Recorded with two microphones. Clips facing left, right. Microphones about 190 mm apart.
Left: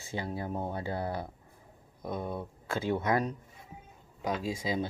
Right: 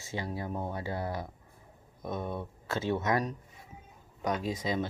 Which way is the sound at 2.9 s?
20° left (ahead or behind).